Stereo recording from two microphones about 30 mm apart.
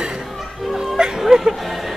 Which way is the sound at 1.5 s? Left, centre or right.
Centre.